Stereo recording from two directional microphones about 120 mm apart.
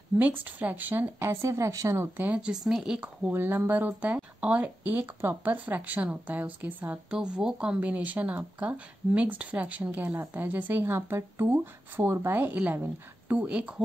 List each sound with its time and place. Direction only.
0.2 s speech: 15° right (ahead or behind)
2.1 s speech: 10° right (ahead or behind)